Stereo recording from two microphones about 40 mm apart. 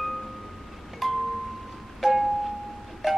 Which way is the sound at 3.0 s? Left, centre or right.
Centre.